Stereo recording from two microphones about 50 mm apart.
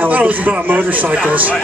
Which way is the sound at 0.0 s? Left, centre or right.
Right.